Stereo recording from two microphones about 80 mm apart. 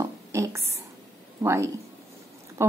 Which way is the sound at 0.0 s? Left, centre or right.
Right.